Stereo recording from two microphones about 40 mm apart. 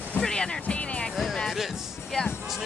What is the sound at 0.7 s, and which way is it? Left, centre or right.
Music, left.